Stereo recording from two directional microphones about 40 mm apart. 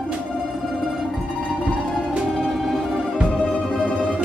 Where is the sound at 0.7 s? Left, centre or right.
Centre.